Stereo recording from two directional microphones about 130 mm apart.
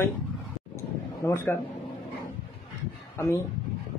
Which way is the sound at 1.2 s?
20° left (ahead or behind).